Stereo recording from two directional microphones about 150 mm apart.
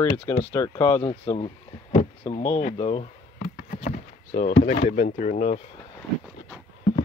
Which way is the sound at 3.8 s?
50° left (ahead or behind).